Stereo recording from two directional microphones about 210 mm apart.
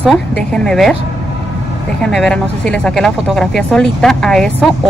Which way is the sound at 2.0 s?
5° left (ahead or behind).